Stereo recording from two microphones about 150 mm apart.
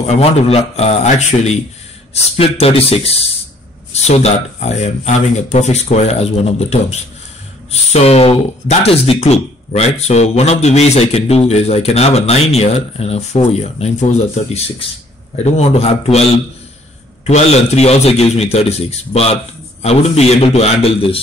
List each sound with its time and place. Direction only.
0.0 s speech: 45° left (ahead or behind)
17.3 s speech: 45° left (ahead or behind)